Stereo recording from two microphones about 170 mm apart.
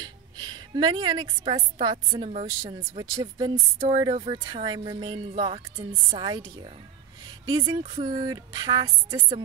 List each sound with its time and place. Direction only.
0.0 s a woman's voice: 25° right (ahead or behind)
7.4 s speech: 30° right (ahead or behind)